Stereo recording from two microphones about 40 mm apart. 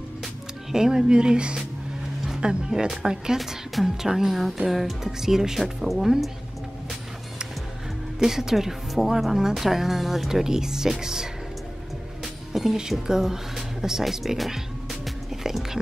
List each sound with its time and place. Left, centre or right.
0.7 s speech: centre
8.2 s speech: centre
12.5 s speech: centre